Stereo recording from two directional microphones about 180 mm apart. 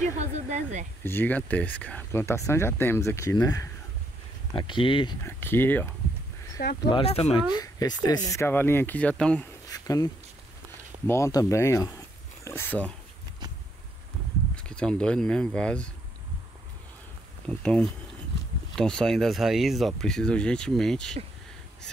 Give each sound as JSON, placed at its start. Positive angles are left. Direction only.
{"t": 0.0, "sound": "speech", "side_deg": -40}
{"t": 1.0, "sound": "speech", "side_deg": 10}
{"t": 5.2, "sound": "speech", "side_deg": 10}
{"t": 6.9, "sound": "speech", "side_deg": 30}
{"t": 7.5, "sound": "speech", "side_deg": 20}
{"t": 9.7, "sound": "a sound", "side_deg": 20}
{"t": 11.1, "sound": "speech", "side_deg": 15}
{"t": 14.5, "sound": "speech", "side_deg": 5}
{"t": 17.5, "sound": "speech", "side_deg": 5}